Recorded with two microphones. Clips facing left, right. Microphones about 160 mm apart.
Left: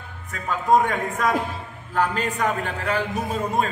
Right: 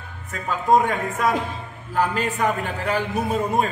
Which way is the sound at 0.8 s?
5° right (ahead or behind).